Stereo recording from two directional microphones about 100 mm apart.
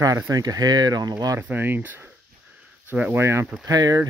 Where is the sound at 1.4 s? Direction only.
20° right (ahead or behind).